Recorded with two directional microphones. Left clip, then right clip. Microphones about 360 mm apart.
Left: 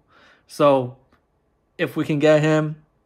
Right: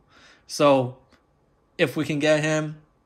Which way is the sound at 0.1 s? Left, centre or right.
Centre.